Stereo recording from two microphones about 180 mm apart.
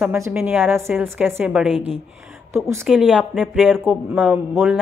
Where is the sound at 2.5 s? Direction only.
15° right (ahead or behind).